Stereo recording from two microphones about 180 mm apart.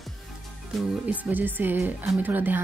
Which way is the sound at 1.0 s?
10° right (ahead or behind).